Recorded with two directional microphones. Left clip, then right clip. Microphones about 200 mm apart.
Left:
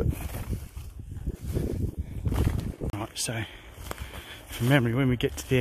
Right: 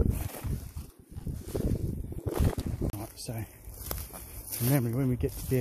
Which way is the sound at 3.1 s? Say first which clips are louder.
Left 9 dB; 25° left (ahead or behind).